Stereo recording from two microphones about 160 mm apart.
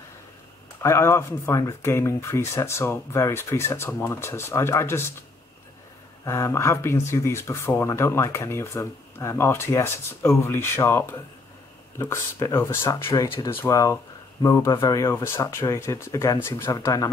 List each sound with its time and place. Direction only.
0.8 s speech: 15° left (ahead or behind)
6.2 s speech: 15° left (ahead or behind)